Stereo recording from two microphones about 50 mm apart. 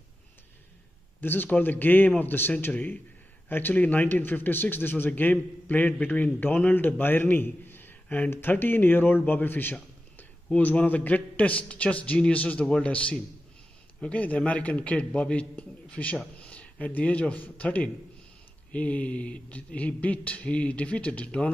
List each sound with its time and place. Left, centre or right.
1.2 s a man's voice: left